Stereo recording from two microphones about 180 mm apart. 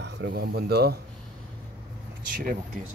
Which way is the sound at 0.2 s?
65° right (ahead or behind).